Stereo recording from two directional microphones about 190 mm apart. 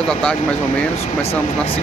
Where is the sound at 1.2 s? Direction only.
30° left (ahead or behind).